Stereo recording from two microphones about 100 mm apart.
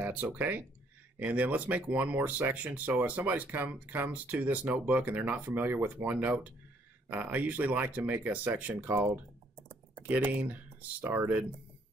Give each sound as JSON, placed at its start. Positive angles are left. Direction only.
{"t": 0.0, "sound": "speech", "side_deg": -15}